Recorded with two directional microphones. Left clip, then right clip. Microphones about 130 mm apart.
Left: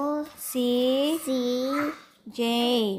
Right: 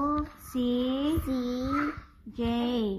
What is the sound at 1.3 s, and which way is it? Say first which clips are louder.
Speech: left 5 dB; 15° left (ahead or behind).